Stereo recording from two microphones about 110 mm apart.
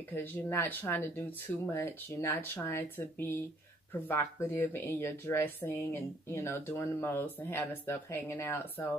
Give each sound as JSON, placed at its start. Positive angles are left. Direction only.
{"t": 0.1, "sound": "speech", "side_deg": 20}